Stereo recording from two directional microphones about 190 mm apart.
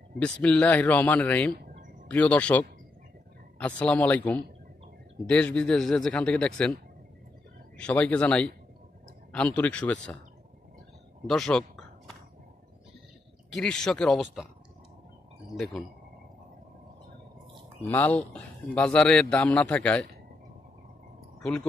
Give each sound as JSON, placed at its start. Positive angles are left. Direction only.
{"t": 0.2, "sound": "speech", "side_deg": 5}
{"t": 1.6, "sound": "a sound", "side_deg": -50}
{"t": 2.0, "sound": "speech", "side_deg": 5}
{"t": 11.2, "sound": "speech", "side_deg": 0}
{"t": 13.5, "sound": "speech", "side_deg": 5}
{"t": 15.5, "sound": "speech", "side_deg": 0}
{"t": 17.8, "sound": "speech", "side_deg": 10}
{"t": 21.4, "sound": "speech", "side_deg": 5}